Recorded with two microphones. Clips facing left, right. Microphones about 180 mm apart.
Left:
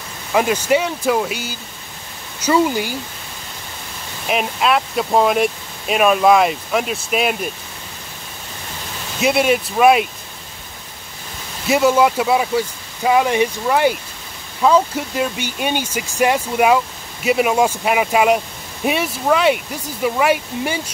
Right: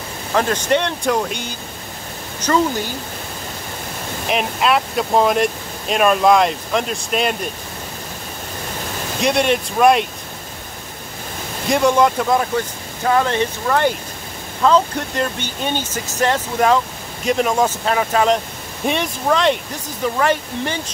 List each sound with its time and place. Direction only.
0.3 s speech: 10° left (ahead or behind)
4.3 s speech: centre (ahead or behind)
9.2 s speech: 5° left (ahead or behind)
11.6 s speech: 5° left (ahead or behind)